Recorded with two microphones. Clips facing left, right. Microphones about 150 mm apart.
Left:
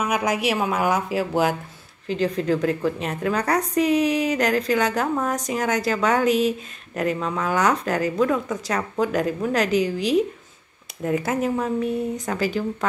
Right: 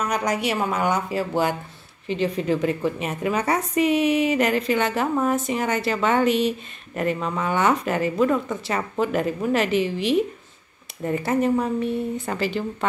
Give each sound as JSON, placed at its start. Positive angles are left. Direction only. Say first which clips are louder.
{"t": 0.0, "sound": "a woman's voice", "louder": "left 1 dB", "side_deg": 5}